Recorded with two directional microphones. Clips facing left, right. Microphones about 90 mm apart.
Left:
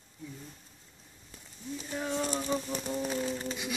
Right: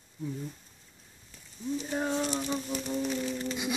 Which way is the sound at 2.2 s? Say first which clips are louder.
Even; 40° left (ahead or behind).